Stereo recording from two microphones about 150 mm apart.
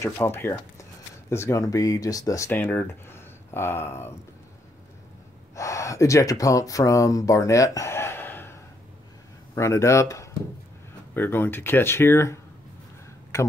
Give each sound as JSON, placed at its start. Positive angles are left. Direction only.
{"t": 0.0, "sound": "speech", "side_deg": 15}
{"t": 5.6, "sound": "speech", "side_deg": 20}
{"t": 9.6, "sound": "speech", "side_deg": 20}